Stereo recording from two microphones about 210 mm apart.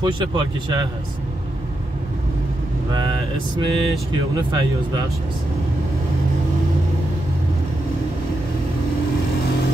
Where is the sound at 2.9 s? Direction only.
20° right (ahead or behind).